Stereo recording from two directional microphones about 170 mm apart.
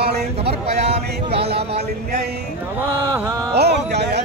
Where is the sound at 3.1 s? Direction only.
20° right (ahead or behind).